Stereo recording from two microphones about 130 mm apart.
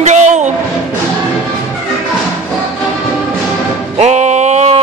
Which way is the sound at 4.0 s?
60° right (ahead or behind).